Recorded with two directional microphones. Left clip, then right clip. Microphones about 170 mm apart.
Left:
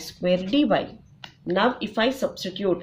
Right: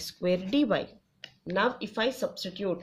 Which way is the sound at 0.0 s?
45° right (ahead or behind).